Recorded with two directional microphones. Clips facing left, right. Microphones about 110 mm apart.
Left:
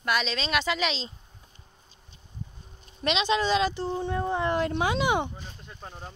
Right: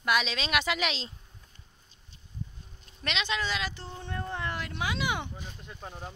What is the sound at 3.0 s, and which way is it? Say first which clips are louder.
Speech: left 7 dB; 20° left (ahead or behind).